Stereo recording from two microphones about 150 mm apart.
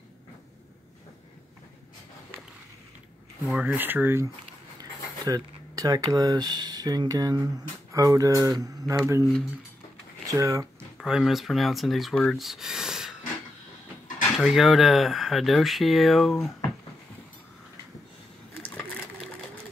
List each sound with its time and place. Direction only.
3.4 s speech: 10° right (ahead or behind)
10.2 s speech: 20° right (ahead or behind)
11.0 s speech: centre (ahead or behind)
14.4 s speech: centre (ahead or behind)